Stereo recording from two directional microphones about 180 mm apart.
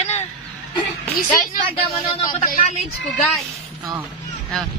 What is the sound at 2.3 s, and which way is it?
Speech, 40° left (ahead or behind).